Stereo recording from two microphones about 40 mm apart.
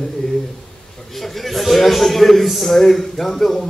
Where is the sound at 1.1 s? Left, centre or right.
Centre.